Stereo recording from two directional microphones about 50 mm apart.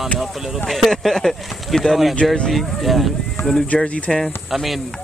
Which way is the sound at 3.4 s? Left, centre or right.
Left.